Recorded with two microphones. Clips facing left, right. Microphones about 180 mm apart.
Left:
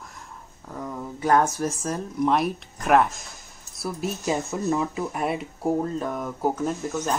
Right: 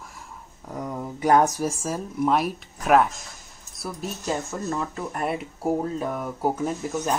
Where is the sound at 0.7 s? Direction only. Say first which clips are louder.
Right 2 dB; 15° right (ahead or behind).